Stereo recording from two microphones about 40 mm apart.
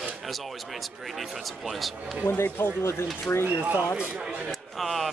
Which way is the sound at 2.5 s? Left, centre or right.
Left.